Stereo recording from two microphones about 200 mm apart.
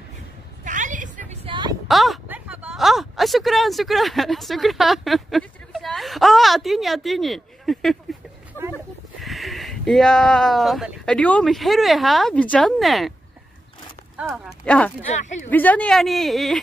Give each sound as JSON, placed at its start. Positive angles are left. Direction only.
{"t": 0.7, "sound": "a sound", "side_deg": -40}
{"t": 1.9, "sound": "a sound", "side_deg": 0}
{"t": 9.2, "sound": "speech", "side_deg": 0}
{"t": 14.1, "sound": "speech", "side_deg": -5}
{"t": 15.1, "sound": "speech", "side_deg": 35}
{"t": 15.5, "sound": "speech", "side_deg": 10}